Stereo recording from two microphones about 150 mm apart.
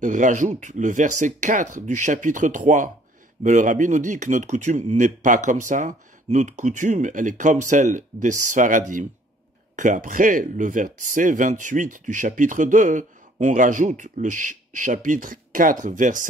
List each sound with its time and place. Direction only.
0.0 s speech: 55° right (ahead or behind)